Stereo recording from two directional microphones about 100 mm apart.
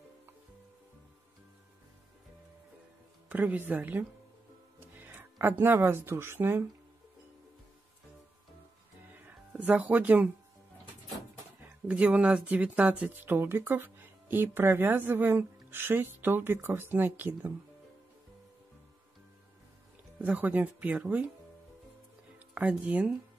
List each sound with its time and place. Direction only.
3.3 s speech: 15° right (ahead or behind)
9.6 s speech: 15° right (ahead or behind)
11.9 s speech: 15° right (ahead or behind)
20.2 s speech: 15° right (ahead or behind)
22.5 s speech: 10° right (ahead or behind)